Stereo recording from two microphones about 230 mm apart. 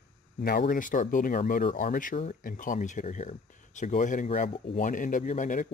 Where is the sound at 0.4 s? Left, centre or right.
Left.